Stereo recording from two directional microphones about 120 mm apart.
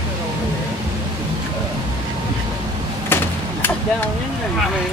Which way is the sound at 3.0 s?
20° left (ahead or behind).